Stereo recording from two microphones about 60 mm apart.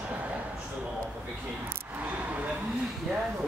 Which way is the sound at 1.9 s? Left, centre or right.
Right.